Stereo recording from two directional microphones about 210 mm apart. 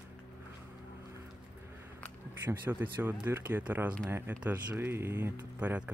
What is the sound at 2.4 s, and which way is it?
Speech, 10° right (ahead or behind).